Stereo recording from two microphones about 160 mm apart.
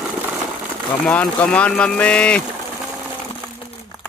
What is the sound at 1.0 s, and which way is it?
Speech, 5° left (ahead or behind).